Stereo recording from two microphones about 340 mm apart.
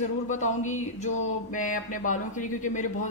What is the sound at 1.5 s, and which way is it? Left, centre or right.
A woman's voice, left.